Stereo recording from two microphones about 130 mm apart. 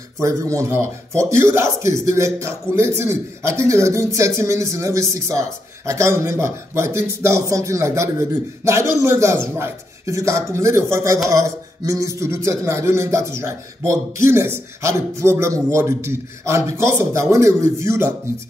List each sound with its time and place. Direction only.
0.2 s speech: 25° right (ahead or behind)